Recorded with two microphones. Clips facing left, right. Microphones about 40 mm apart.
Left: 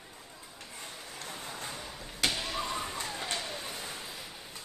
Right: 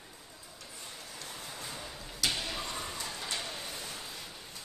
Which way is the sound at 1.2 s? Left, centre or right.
Left.